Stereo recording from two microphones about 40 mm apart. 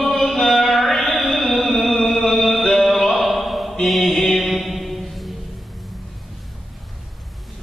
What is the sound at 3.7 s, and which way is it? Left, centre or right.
Mantra, centre.